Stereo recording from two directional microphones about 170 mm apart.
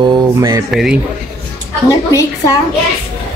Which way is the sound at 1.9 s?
20° left (ahead or behind).